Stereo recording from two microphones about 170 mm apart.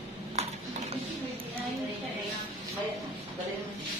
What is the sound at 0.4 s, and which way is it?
Cutlery, 40° right (ahead or behind).